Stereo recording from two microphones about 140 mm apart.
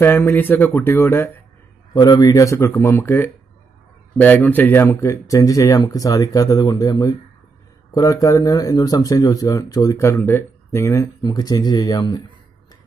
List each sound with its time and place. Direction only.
0.0 s speech: 15° left (ahead or behind)
2.0 s speech: 30° left (ahead or behind)